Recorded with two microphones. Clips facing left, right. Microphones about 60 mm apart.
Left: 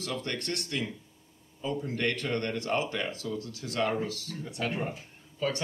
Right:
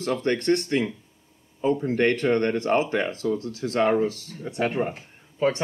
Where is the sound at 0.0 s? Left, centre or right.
Right.